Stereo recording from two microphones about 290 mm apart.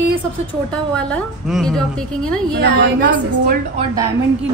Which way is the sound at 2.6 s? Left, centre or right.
Right.